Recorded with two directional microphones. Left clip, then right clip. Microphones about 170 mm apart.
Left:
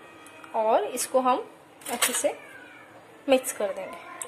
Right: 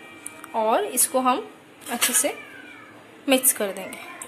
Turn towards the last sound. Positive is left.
turn(degrees=5)  # may be behind; listen again after turning